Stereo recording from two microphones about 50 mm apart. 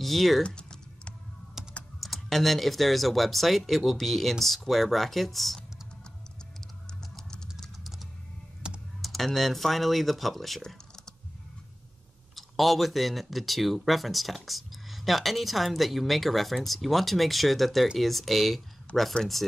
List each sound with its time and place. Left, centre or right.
0.0 s speech: centre
0.6 s typing: centre
1.6 s typing: centre
2.0 s speech: centre
8.6 s typing: centre
9.0 s speech: centre
12.4 s speech: centre
18.9 s speech: left